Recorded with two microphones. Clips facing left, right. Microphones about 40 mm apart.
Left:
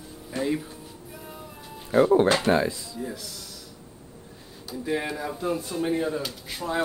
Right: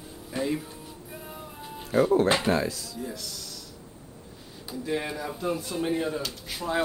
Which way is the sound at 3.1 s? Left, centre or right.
Centre.